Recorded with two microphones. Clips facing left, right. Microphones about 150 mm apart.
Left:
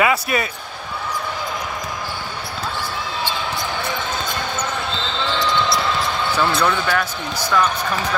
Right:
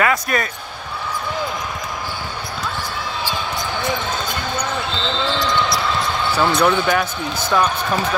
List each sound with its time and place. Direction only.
0.0 s speech: 10° left (ahead or behind)
6.3 s speech: 15° right (ahead or behind)